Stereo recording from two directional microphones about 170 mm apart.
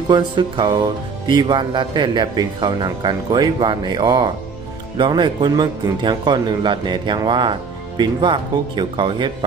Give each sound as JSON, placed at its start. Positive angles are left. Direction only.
{"t": 0.1, "sound": "speech", "side_deg": -25}